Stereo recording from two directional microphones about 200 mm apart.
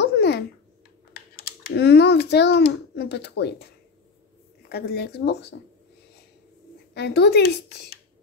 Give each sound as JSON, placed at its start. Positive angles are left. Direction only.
{"t": 0.0, "sound": "a sound", "side_deg": 55}
{"t": 1.3, "sound": "a child's voice", "side_deg": 50}
{"t": 4.6, "sound": "speech", "side_deg": 55}
{"t": 6.9, "sound": "speech", "side_deg": 55}